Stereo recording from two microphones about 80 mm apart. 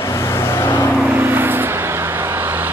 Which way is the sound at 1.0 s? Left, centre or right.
Right.